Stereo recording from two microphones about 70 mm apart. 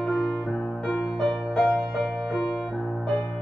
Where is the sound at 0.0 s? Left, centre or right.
Centre.